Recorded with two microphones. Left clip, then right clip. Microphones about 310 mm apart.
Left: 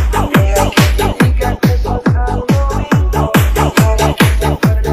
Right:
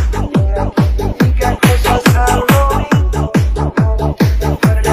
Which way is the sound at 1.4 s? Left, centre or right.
Centre.